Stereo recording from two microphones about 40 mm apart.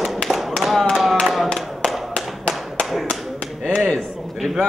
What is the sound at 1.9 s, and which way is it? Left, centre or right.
Tap, centre.